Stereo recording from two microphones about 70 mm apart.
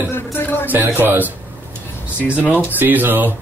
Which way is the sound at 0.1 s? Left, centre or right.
Left.